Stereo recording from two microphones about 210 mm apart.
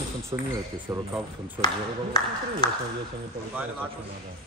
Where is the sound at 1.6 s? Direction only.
20° left (ahead or behind).